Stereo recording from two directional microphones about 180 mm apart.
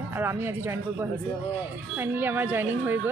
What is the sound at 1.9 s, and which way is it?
Speech, 10° right (ahead or behind).